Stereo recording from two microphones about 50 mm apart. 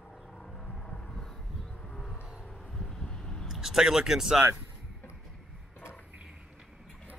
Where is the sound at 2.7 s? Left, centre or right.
Centre.